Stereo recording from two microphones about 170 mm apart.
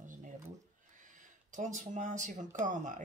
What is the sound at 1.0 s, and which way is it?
Speech, 50° right (ahead or behind).